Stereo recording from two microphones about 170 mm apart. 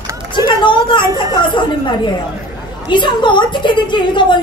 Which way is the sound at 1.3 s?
25° left (ahead or behind).